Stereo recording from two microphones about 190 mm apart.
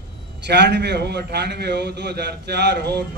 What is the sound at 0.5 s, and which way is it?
A man's voice, 60° right (ahead or behind).